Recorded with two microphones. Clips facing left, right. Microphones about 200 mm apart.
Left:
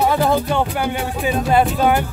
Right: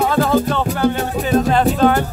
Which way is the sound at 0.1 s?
15° left (ahead or behind).